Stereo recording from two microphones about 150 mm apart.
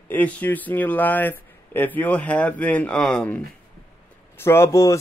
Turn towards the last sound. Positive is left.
turn(degrees=20)  # may be behind; listen again after turning